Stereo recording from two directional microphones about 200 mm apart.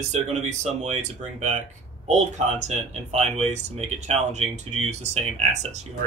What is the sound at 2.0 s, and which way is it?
Speech, 35° right (ahead or behind).